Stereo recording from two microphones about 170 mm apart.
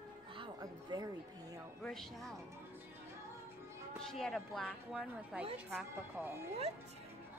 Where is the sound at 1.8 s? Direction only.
Centre (ahead or behind).